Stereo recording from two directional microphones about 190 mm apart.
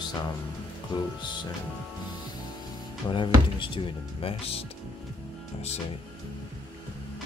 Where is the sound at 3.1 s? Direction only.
25° left (ahead or behind).